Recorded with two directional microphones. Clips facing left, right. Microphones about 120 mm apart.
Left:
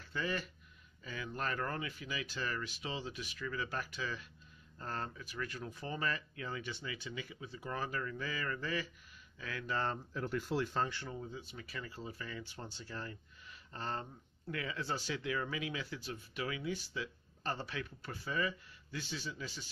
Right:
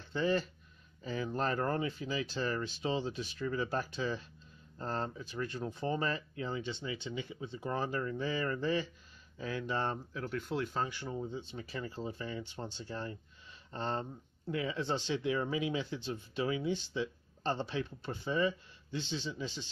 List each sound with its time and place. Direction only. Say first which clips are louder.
0.0 s speech: right 7 dB; 30° right (ahead or behind)
10.1 s speech: even; centre (ahead or behind)
10.9 s speech: right 5 dB; 15° right (ahead or behind)